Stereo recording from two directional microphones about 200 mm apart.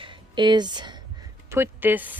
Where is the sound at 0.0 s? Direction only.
25° right (ahead or behind).